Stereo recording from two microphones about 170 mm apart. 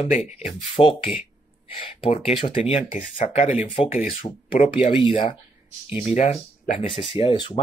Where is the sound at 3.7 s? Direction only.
35° left (ahead or behind).